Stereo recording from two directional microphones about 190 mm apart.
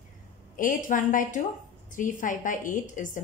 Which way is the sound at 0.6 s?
45° left (ahead or behind).